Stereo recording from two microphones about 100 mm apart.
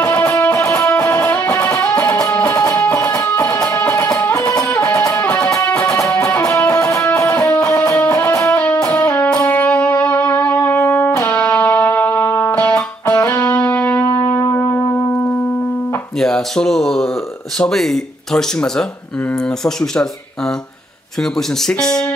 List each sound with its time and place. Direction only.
0.0 s music: 20° left (ahead or behind)
0.6 s music: 30° left (ahead or behind)
8.3 s music: 30° left (ahead or behind)
8.5 s music: 15° left (ahead or behind)
8.8 s music: 30° left (ahead or behind)
9.1 s music: 15° left (ahead or behind)
16.2 s speech: 5° left (ahead or behind)